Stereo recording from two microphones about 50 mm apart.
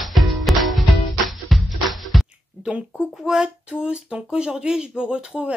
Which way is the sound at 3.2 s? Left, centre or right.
Centre.